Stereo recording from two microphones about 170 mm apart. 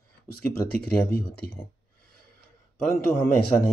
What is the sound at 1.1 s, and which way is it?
Speech, 65° left (ahead or behind).